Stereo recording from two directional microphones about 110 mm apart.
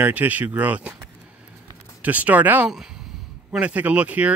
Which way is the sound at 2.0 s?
15° right (ahead or behind).